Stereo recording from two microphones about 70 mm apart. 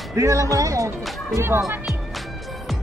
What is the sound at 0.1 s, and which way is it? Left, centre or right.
Speech, right.